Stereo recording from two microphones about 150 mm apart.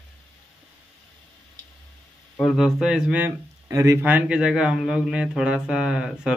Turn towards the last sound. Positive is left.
turn(degrees=-5)  # may be behind; listen again after turning